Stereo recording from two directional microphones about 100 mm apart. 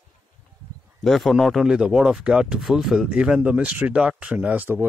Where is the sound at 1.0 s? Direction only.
Centre (ahead or behind).